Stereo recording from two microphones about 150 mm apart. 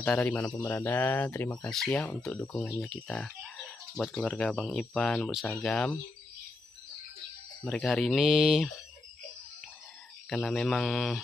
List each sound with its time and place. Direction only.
0.2 s speech: 20° left (ahead or behind)
7.6 s speech: 5° left (ahead or behind)
10.3 s speech: 5° left (ahead or behind)